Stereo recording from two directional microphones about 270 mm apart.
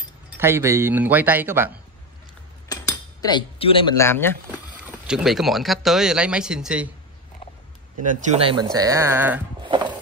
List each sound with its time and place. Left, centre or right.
0.4 s speech: centre
2.7 s speech: centre
4.8 s speech: centre
8.0 s speech: right; by 9.4 s centre
9.6 s a sound: centre